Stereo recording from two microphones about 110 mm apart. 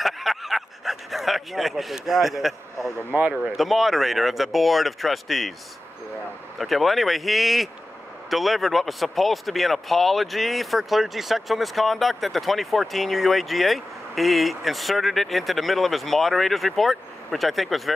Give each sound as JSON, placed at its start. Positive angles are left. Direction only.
{"t": 0.0, "sound": "a sound", "side_deg": 0}
{"t": 3.4, "sound": "speech", "side_deg": 0}
{"t": 6.6, "sound": "speech", "side_deg": 0}